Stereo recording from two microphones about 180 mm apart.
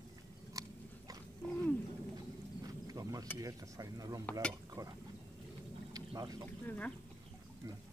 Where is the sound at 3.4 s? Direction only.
20° right (ahead or behind).